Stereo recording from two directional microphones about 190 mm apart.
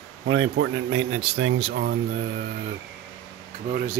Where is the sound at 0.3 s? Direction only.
70° right (ahead or behind).